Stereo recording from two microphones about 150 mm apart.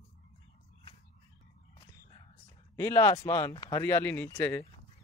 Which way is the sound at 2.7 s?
20° left (ahead or behind).